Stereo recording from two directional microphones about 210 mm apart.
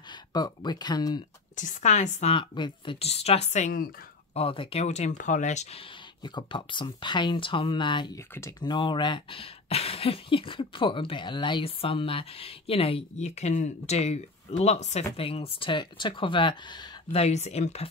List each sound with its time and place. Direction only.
0.3 s speech: 20° left (ahead or behind)
1.6 s speech: 35° left (ahead or behind)
4.3 s speech: 25° left (ahead or behind)
6.2 s speech: 20° left (ahead or behind)